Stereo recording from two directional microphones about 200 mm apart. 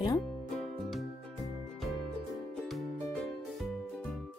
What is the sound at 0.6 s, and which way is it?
Music, centre (ahead or behind).